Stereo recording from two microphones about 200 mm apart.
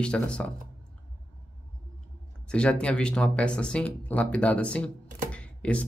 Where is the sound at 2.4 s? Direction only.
5° left (ahead or behind).